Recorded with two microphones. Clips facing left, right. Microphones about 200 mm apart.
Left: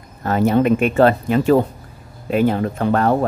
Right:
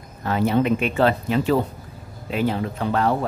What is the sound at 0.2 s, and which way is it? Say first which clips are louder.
Speech: left 4 dB; 45° left (ahead or behind).